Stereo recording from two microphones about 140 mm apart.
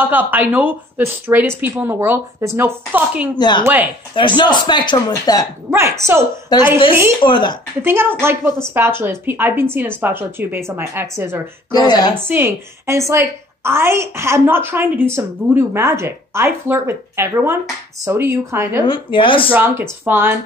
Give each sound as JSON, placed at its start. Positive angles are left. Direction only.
{"t": 0.0, "sound": "a woman's voice", "side_deg": -15}
{"t": 3.3, "sound": "speech", "side_deg": 30}
{"t": 5.7, "sound": "speech", "side_deg": -20}
{"t": 7.2, "sound": "speech", "side_deg": 35}
{"t": 7.8, "sound": "a woman's voice", "side_deg": -15}
{"t": 11.7, "sound": "speech", "side_deg": 30}
{"t": 12.3, "sound": "a woman's voice", "side_deg": -15}
{"t": 18.8, "sound": "speech", "side_deg": 35}
{"t": 19.5, "sound": "a woman's voice", "side_deg": -15}